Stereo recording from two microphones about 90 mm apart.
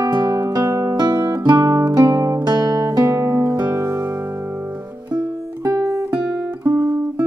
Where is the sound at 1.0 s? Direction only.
50° right (ahead or behind).